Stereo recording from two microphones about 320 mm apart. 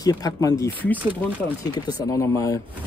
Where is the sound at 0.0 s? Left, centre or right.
Centre.